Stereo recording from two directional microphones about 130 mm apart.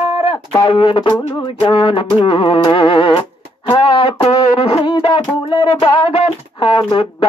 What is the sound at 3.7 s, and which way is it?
Music, 45° left (ahead or behind).